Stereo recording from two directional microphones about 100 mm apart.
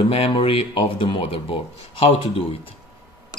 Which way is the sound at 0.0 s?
70° left (ahead or behind).